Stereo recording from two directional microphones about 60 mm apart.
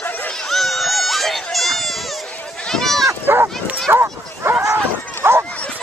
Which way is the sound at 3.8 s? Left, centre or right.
Right.